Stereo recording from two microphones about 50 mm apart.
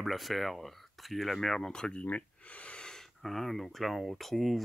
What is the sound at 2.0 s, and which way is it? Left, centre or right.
Speech, left.